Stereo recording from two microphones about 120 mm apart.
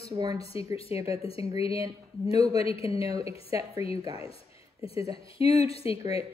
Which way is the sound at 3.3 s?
55° left (ahead or behind).